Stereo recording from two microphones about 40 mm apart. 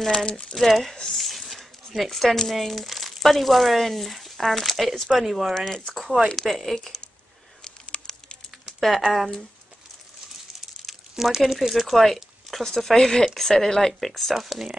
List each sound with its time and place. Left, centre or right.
0.1 s speech: left
0.6 s speech: centre
6.2 s speech: centre
7.9 s a sound: left
8.7 s a sound: centre
11.1 s speech: centre
14.3 s speech: centre